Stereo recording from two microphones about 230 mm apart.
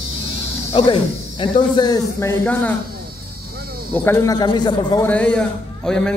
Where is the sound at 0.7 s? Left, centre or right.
Left; by 2.8 s centre.